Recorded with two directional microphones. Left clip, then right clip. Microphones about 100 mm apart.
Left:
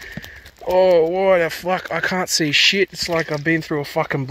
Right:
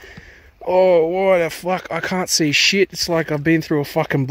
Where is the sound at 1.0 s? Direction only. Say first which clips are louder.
Even; 30° right (ahead or behind); by 3.0 s 65° right (ahead or behind).